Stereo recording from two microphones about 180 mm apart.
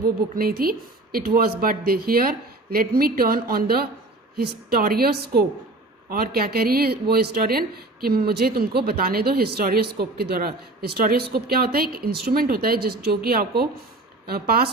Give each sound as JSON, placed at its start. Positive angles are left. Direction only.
{"t": 0.4, "sound": "speech", "side_deg": -55}